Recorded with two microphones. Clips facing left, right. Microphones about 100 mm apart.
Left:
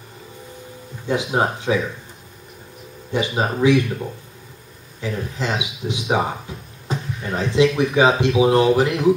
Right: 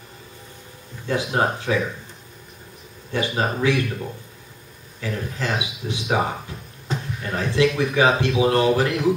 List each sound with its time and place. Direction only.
1.0 s speech: 15° left (ahead or behind)
3.1 s speech: 20° left (ahead or behind)
6.9 s a sound: 10° left (ahead or behind)
7.3 s speech: 20° left (ahead or behind)